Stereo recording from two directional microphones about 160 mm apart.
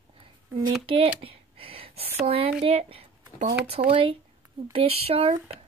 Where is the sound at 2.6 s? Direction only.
40° right (ahead or behind).